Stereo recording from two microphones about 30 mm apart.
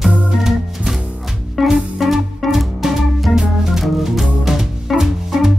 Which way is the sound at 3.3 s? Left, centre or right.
Centre.